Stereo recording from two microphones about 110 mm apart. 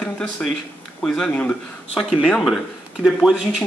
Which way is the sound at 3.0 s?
5° right (ahead or behind).